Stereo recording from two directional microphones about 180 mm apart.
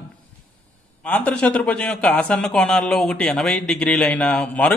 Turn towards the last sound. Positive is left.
turn(degrees=5)  # may be behind; listen again after turning